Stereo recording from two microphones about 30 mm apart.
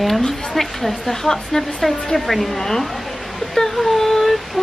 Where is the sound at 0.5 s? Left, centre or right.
Centre.